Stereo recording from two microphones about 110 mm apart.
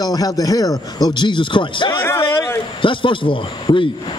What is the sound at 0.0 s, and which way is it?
Speech, 35° left (ahead or behind).